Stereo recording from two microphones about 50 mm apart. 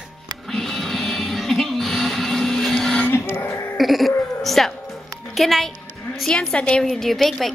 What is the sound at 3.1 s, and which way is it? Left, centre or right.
Music, left.